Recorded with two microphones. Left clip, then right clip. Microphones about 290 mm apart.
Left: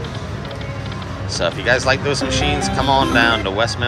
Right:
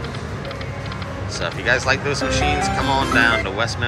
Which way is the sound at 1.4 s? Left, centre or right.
Centre.